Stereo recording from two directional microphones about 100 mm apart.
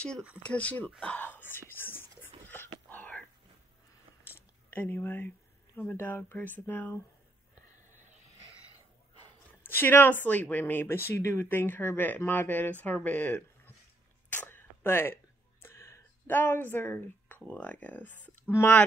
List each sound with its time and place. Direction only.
0.4 s speech: 10° left (ahead or behind)
1.0 s whispering: 15° left (ahead or behind)
4.3 s a sound: 20° left (ahead or behind)
5.8 s speech: 20° left (ahead or behind)
9.7 s speech: 20° left (ahead or behind)
14.3 s a sound: 20° left (ahead or behind)
15.6 s speech: 30° left (ahead or behind)